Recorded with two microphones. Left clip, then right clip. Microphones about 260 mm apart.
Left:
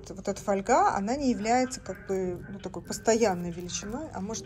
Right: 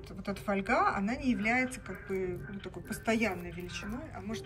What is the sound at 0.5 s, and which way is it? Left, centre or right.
Speech, centre.